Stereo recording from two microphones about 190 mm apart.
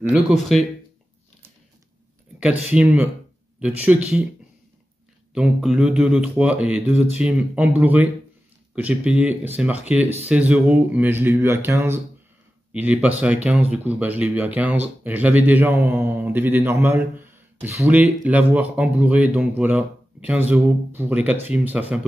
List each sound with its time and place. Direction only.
0.1 s speech: centre (ahead or behind)
2.4 s speech: 5° right (ahead or behind)
5.3 s speech: centre (ahead or behind)